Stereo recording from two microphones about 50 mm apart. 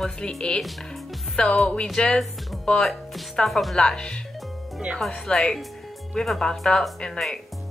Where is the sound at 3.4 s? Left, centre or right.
Centre.